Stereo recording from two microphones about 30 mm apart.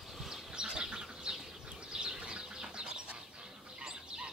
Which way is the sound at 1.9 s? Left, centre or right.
Right.